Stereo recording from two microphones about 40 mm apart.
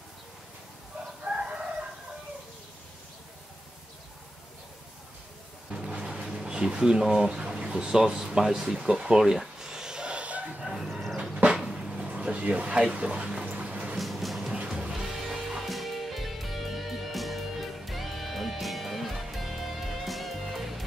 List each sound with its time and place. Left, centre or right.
1.2 s chicken: right
5.9 s a sound: centre
7.2 s speech: right
9.6 s a sound: centre; by 10.6 s right
10.6 s chicken: centre
11.7 s a sound: right
12.1 s speech: right
13.1 s speech: centre
13.5 s music: right
13.9 s music: centre
14.5 s music: right; by 20.8 s centre